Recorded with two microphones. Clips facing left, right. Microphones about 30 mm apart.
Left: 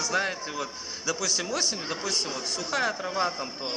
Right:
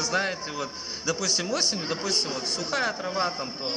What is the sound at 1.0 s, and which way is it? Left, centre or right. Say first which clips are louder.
A child's voice: right 2 dB; centre.